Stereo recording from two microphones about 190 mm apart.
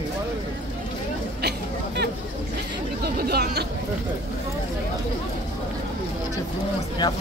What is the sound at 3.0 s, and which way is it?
Speech, 55° right (ahead or behind).